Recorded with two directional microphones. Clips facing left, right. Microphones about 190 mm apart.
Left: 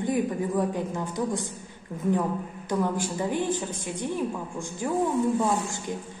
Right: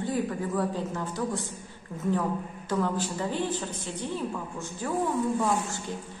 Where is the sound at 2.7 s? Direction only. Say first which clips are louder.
Left 1 dB; 15° left (ahead or behind).